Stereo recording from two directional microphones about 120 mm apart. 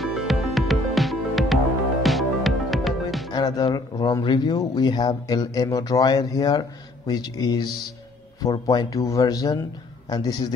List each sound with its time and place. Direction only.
0.0 s music: centre (ahead or behind)
3.3 s speech: 35° left (ahead or behind)